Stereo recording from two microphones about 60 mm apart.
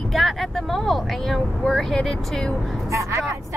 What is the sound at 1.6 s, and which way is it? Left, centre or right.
Speech, centre.